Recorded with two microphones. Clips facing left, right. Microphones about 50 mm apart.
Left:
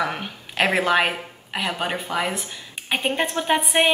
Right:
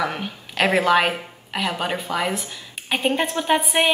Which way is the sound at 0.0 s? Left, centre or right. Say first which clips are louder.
Even; centre.